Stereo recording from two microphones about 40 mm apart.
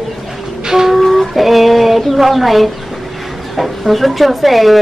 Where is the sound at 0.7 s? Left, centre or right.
Centre.